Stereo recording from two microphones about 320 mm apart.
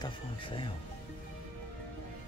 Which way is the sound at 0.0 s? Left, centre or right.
Centre.